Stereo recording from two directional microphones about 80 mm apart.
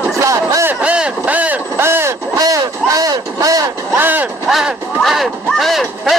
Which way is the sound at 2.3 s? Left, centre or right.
Right.